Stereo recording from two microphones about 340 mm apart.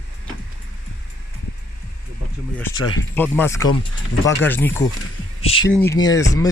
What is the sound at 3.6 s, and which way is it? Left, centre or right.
Speech, left.